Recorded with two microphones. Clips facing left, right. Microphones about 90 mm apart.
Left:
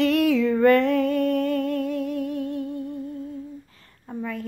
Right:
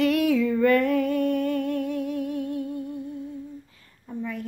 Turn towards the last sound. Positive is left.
turn(degrees=55)  # may be behind; listen again after turning